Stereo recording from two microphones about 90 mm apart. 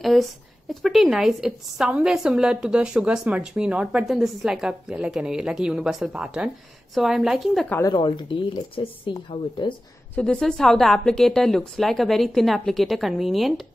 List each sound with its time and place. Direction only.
0.0 s a woman's voice: centre (ahead or behind)
7.9 s speech: 70° left (ahead or behind)
10.1 s speech: 10° left (ahead or behind)